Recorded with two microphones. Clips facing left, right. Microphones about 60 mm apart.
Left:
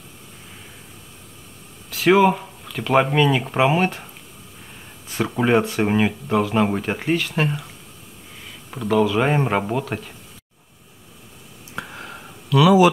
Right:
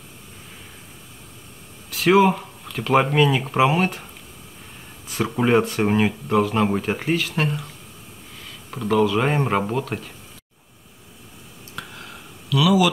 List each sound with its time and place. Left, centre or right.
1.9 s speech: centre
5.0 s speech: centre
11.7 s a sound: left